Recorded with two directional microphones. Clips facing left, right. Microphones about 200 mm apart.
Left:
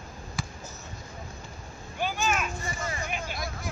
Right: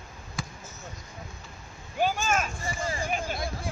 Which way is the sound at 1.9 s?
40° right (ahead or behind).